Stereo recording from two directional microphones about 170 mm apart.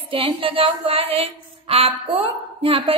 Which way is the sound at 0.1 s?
30° right (ahead or behind).